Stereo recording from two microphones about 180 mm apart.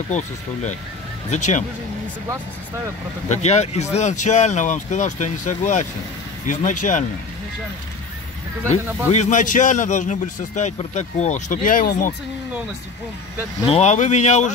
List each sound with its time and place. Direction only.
0.1 s speech: 40° left (ahead or behind)
1.3 s speech: 40° left (ahead or behind)
3.3 s a man's voice: 40° left (ahead or behind)
9.1 s a man's voice: 40° left (ahead or behind)
13.7 s speech: 35° left (ahead or behind)